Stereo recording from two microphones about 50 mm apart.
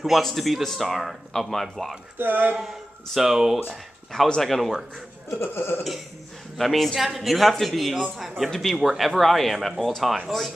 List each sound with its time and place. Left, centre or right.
0.0 s speech: centre
2.1 s speech: right
2.6 s speech: centre
4.4 s speech: centre
5.4 s burping: left
6.6 s speech: centre